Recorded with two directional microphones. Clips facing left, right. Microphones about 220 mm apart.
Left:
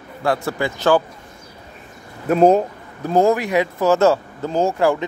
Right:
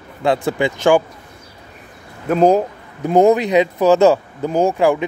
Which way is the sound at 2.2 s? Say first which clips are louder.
Even; 5° left (ahead or behind).